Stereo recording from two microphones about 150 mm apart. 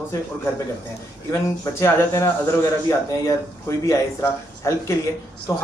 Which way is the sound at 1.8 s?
20° left (ahead or behind).